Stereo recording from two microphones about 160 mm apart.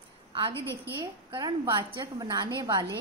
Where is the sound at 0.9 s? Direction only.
25° right (ahead or behind).